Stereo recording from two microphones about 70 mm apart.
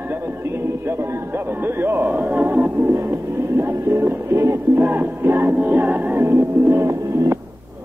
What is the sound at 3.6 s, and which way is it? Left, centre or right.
A man's voice, right.